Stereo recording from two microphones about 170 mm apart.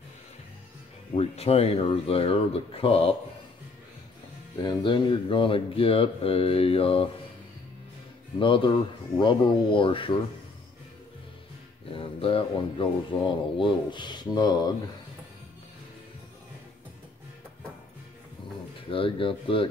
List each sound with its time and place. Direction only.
1.1 s speech: 35° left (ahead or behind)
4.6 s speech: 25° left (ahead or behind)
8.4 s speech: 30° left (ahead or behind)
11.9 s speech: 30° left (ahead or behind)
18.9 s speech: 30° left (ahead or behind)